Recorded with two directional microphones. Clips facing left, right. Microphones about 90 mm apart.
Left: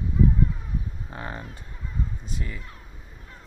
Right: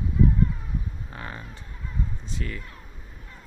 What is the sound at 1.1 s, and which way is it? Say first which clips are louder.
Speech: left 5 dB; 25° left (ahead or behind).